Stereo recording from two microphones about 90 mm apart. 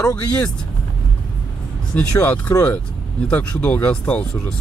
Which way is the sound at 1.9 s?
20° left (ahead or behind).